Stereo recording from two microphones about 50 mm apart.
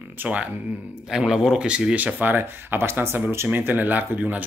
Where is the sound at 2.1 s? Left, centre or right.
Right.